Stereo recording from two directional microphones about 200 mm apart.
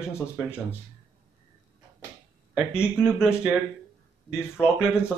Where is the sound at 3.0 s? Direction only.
5° right (ahead or behind).